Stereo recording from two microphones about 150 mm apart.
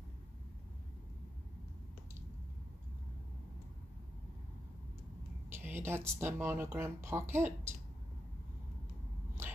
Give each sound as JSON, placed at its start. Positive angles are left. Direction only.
{"t": 5.5, "sound": "speech", "side_deg": -15}